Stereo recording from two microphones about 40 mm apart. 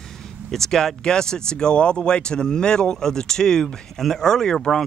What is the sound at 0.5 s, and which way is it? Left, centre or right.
Speech, centre.